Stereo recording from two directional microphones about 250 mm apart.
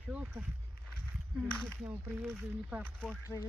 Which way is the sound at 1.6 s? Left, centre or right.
Centre.